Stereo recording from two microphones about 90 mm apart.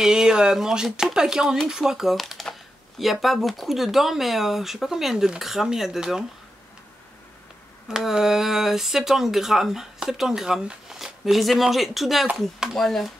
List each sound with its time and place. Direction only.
0.0 s speech: 5° right (ahead or behind)
7.9 s speech: 5° right (ahead or behind)